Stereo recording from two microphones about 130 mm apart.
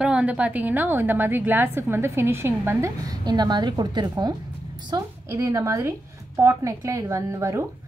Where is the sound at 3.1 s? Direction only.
35° right (ahead or behind).